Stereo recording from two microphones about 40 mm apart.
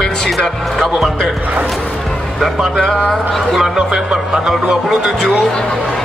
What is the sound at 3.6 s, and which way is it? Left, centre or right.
Speech, centre.